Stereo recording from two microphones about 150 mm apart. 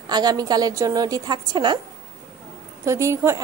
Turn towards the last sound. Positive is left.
turn(degrees=-20)  # may be behind; listen again after turning